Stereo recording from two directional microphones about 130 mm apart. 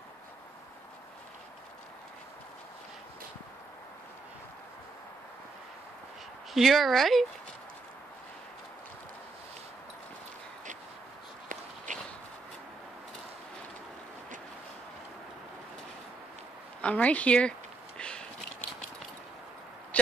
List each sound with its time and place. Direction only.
6.5 s speech: centre (ahead or behind)
11.4 s walk: 75° right (ahead or behind)
16.8 s a sound: 10° left (ahead or behind)